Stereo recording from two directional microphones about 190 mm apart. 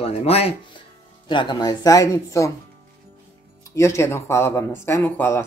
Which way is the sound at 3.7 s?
15° left (ahead or behind).